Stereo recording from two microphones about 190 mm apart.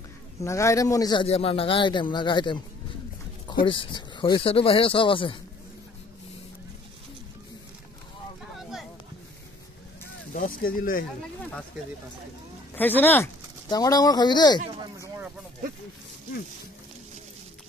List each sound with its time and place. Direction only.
0.4 s speech: 15° left (ahead or behind)
1.2 s speech: 30° left (ahead or behind)
3.6 s speech: 25° left (ahead or behind)
8.5 s a sound: centre (ahead or behind)
10.3 s speech: 50° left (ahead or behind)
12.7 s speech: 10° left (ahead or behind)
14.8 s speech: 15° right (ahead or behind)